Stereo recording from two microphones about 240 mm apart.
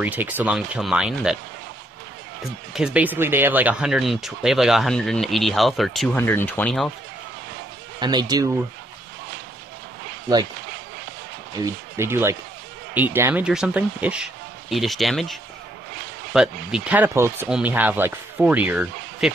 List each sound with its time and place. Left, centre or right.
0.0 s speech: centre
2.4 s speech: centre
8.0 s speech: centre
11.6 s speech: centre
16.3 s speech: centre